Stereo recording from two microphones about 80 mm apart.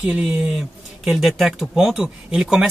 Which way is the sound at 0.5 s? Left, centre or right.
Centre.